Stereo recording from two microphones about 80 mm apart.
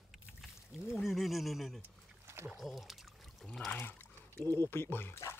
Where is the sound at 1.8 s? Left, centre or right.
Right.